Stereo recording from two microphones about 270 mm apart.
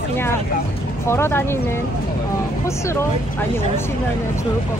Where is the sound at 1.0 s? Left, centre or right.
Centre.